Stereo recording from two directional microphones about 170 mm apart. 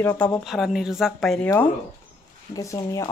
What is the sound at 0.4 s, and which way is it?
Speech, centre (ahead or behind).